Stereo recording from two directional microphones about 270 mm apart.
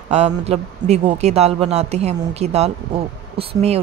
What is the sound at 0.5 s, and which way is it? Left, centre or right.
Speech, right.